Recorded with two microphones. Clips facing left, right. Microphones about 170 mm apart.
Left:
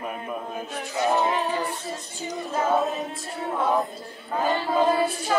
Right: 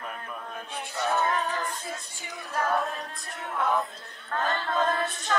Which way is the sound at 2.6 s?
20° left (ahead or behind).